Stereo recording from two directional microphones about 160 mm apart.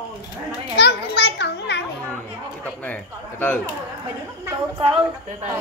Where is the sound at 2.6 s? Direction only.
10° left (ahead or behind).